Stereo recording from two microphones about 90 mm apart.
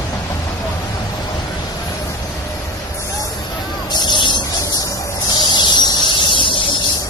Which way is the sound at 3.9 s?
55° left (ahead or behind).